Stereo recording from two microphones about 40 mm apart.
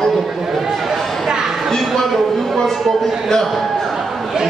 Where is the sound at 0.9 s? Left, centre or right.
Centre.